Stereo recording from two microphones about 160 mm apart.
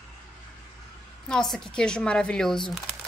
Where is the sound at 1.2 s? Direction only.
5° left (ahead or behind).